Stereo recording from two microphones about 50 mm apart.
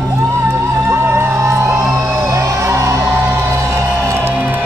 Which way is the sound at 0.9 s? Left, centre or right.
Right.